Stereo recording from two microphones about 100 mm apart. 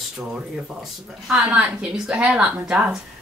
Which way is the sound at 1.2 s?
10° right (ahead or behind).